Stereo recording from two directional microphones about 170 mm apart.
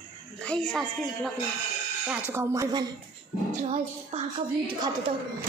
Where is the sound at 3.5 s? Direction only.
40° right (ahead or behind).